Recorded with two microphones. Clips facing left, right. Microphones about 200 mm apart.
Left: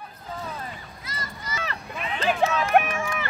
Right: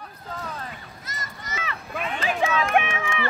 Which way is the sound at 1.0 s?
45° right (ahead or behind).